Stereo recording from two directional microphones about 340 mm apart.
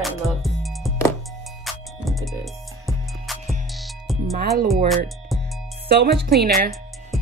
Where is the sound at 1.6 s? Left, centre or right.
Centre.